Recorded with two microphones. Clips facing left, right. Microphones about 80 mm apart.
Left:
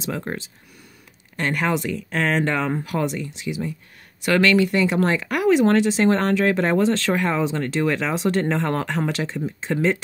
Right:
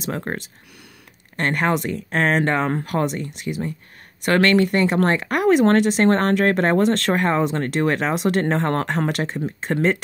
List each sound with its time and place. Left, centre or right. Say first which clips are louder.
0.0 s speech: right 1 dB; right